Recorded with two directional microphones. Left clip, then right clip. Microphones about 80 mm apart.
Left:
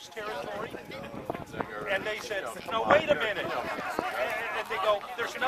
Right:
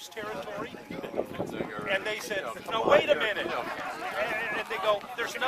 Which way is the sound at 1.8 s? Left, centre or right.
Right.